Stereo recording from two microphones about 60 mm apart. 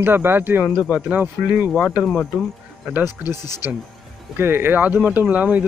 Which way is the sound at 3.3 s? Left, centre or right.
Left.